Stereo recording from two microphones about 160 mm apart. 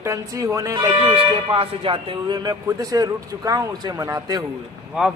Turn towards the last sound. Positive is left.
turn(degrees=-5)  # may be behind; listen again after turning